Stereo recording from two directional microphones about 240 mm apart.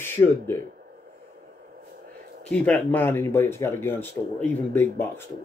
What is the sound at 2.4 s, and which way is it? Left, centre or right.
Speech, centre.